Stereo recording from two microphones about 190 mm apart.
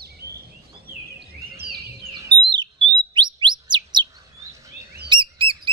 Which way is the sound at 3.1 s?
25° right (ahead or behind).